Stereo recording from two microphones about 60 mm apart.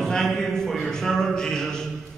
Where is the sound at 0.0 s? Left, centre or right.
Centre.